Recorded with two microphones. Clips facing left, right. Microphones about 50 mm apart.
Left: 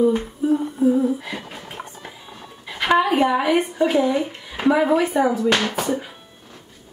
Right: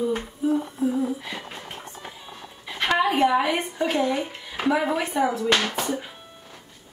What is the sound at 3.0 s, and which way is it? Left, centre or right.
Speech, centre.